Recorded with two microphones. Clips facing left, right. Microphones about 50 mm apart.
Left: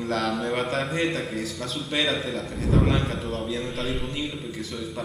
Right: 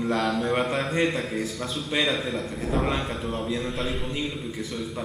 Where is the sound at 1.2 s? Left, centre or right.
Centre.